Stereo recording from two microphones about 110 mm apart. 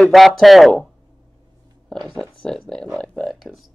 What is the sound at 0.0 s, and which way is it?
Speech, centre (ahead or behind).